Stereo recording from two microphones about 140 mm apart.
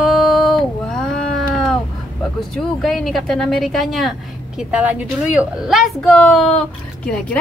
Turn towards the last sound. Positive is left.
turn(degrees=5)  # may be behind; listen again after turning